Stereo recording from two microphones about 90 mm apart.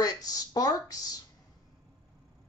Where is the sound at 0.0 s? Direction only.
45° left (ahead or behind).